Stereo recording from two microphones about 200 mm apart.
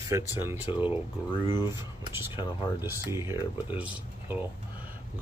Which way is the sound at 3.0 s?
15° right (ahead or behind).